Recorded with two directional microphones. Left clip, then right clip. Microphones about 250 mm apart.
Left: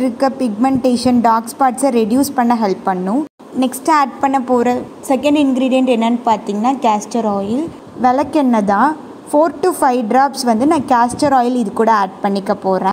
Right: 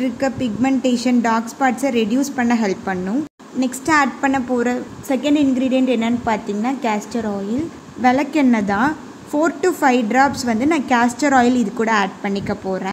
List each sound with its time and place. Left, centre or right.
0.0 s a woman's voice: centre